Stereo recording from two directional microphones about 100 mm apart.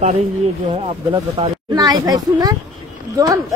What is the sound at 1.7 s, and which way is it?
Speech, 40° right (ahead or behind).